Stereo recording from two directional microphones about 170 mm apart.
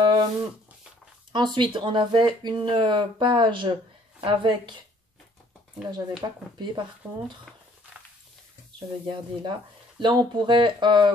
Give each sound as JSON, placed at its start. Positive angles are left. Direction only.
{"t": 0.0, "sound": "a sound", "side_deg": -25}
{"t": 1.3, "sound": "speech", "side_deg": -25}
{"t": 6.2, "sound": "speech", "side_deg": -20}
{"t": 8.7, "sound": "speech", "side_deg": -25}